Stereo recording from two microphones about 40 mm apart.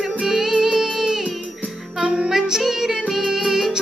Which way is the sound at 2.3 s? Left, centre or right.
Centre.